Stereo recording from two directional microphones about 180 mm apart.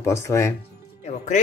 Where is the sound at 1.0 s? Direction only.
40° left (ahead or behind).